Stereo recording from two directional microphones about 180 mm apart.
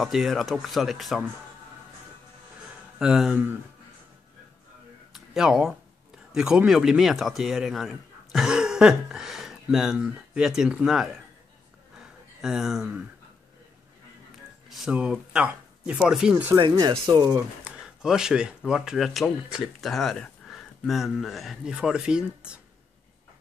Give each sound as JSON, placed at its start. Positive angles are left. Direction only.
{"t": 0.0, "sound": "speech", "side_deg": 0}
{"t": 3.0, "sound": "speech", "side_deg": -5}
{"t": 5.1, "sound": "speech", "side_deg": 0}
{"t": 12.4, "sound": "speech", "side_deg": -5}
{"t": 14.7, "sound": "speech", "side_deg": -5}
{"t": 16.5, "sound": "speech", "side_deg": -20}
{"t": 17.7, "sound": "speech", "side_deg": -5}